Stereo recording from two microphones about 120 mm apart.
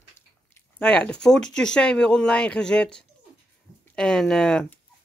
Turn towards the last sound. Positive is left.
turn(degrees=5)  # may be behind; listen again after turning